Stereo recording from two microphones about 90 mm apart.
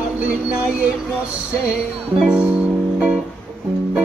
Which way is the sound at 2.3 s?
10° right (ahead or behind).